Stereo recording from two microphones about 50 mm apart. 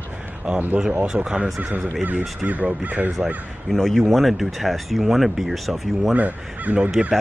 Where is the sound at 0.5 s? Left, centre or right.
Centre.